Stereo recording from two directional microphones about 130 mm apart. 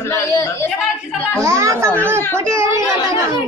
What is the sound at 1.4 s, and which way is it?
Speech, 20° right (ahead or behind).